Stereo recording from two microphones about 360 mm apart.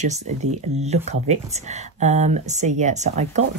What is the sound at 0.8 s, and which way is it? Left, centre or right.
Speech, centre.